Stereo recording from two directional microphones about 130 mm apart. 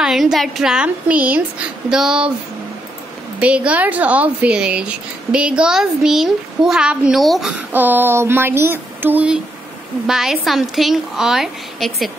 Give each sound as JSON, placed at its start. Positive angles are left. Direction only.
{"t": 0.0, "sound": "a woman's voice", "side_deg": 0}
{"t": 3.3, "sound": "speech", "side_deg": -10}
{"t": 7.7, "sound": "a woman's voice", "side_deg": -15}